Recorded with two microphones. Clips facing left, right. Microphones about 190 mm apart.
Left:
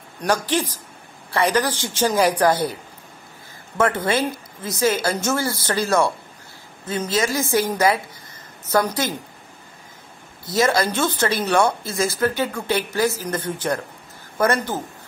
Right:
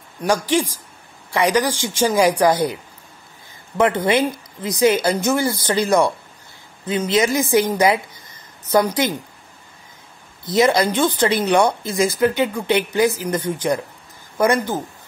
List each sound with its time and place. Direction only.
0.2 s speech: 10° right (ahead or behind)
3.7 s speech: 15° right (ahead or behind)
10.4 s speech: 20° right (ahead or behind)